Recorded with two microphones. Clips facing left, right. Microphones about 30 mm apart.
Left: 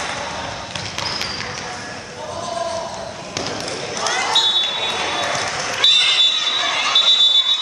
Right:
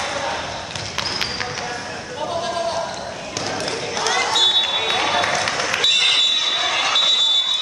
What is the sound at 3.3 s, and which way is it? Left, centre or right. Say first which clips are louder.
Basketball bounce: even; centre.